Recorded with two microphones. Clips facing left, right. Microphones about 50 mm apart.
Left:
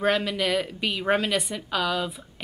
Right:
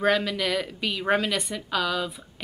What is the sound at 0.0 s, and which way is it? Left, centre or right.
Speech, centre.